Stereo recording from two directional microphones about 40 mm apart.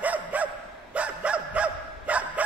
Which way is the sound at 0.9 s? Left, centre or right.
Right.